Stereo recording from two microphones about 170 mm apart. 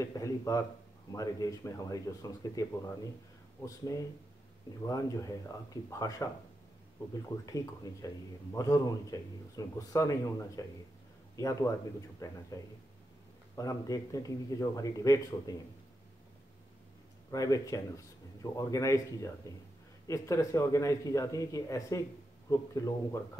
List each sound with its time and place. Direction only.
0.0 s speech: 20° left (ahead or behind)
7.4 s speech: 20° left (ahead or behind)
13.6 s speech: 20° left (ahead or behind)
17.3 s speech: 20° left (ahead or behind)